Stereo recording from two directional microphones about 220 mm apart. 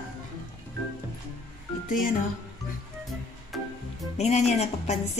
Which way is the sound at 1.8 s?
35° left (ahead or behind).